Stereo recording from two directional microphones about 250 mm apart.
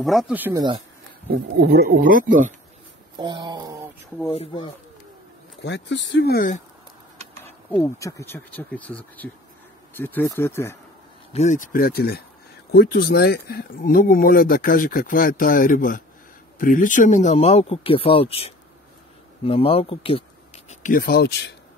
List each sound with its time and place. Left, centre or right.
0.0 s speech: centre
1.3 s speech: right
3.2 s speech: centre
4.3 s speech: left
5.6 s speech: left
7.4 s speech: centre
11.3 s speech: left
20.8 s speech: left